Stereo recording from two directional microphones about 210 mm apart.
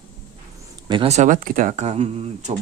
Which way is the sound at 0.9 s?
25° right (ahead or behind).